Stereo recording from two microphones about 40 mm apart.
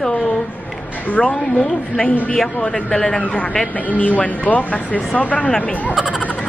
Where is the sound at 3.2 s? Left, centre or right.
Left.